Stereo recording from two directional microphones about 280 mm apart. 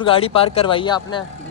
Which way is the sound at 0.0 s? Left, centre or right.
Centre.